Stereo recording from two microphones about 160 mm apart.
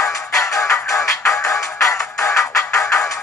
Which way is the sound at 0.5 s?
5° left (ahead or behind).